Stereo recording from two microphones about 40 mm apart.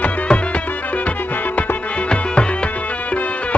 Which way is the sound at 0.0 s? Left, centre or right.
Left.